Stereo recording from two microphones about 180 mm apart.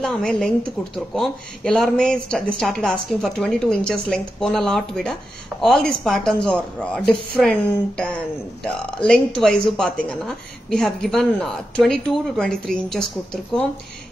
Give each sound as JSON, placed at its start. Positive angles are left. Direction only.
{"t": 0.0, "sound": "speech", "side_deg": 5}
{"t": 8.6, "sound": "speech", "side_deg": 5}